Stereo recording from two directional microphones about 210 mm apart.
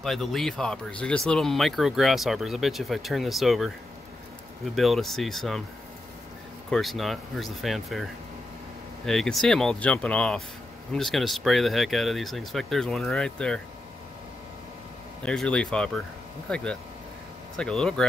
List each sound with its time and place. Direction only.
0.0 s speech: centre (ahead or behind)
4.7 s speech: centre (ahead or behind)
6.7 s speech: centre (ahead or behind)
15.2 s speech: 5° left (ahead or behind)